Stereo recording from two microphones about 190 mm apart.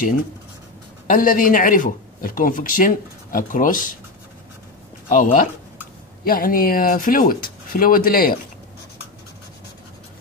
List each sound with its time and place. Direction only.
1.0 s speech: 45° left (ahead or behind)
5.0 s speech: 45° left (ahead or behind)